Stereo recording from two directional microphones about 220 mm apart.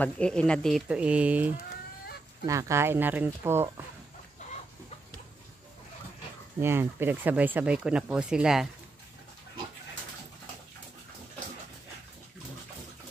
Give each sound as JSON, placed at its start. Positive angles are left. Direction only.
{"t": 0.0, "sound": "speech", "side_deg": 5}
{"t": 6.6, "sound": "speech", "side_deg": -10}